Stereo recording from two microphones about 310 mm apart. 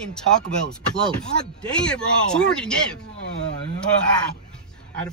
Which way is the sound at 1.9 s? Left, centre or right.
Centre.